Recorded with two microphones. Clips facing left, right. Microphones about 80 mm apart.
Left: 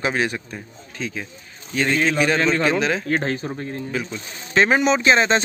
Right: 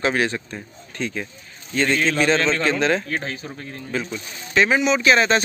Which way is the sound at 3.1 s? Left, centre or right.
Left.